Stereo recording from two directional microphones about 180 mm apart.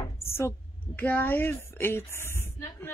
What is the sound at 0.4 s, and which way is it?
Speech, 15° left (ahead or behind).